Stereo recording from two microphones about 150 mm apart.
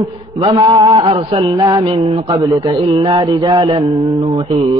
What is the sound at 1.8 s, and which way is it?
Speech, 35° right (ahead or behind).